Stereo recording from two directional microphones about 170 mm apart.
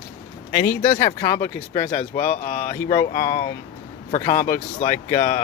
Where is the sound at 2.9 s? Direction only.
25° left (ahead or behind).